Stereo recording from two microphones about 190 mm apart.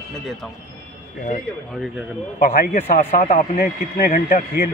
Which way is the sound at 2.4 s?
50° left (ahead or behind).